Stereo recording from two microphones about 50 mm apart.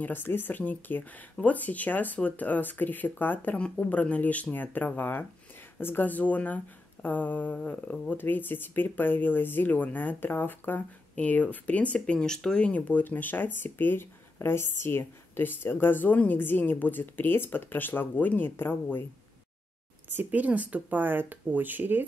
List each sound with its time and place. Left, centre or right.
0.0 s speech: left
3.5 s speech: left
6.0 s speech: left
11.1 s speech: left; by 12.6 s centre
12.6 s speech: left
20.1 s speech: right
21.0 s speech: right